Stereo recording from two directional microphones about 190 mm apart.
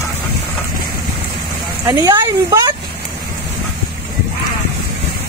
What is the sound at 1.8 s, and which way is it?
Vehicle, 15° right (ahead or behind).